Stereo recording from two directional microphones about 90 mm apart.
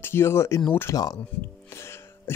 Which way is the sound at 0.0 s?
25° left (ahead or behind).